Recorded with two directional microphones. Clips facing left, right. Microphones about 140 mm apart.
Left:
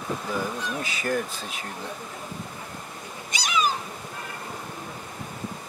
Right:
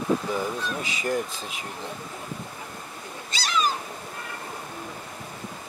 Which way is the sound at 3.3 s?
10° left (ahead or behind).